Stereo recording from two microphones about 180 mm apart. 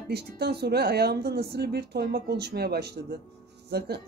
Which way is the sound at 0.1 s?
65° right (ahead or behind).